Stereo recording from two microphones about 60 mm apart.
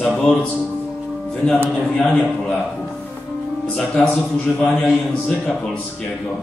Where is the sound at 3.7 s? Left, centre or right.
Centre.